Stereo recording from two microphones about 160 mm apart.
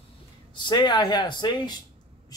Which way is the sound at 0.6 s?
30° left (ahead or behind).